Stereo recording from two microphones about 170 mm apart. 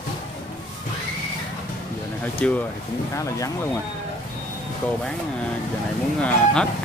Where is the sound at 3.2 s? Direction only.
20° left (ahead or behind).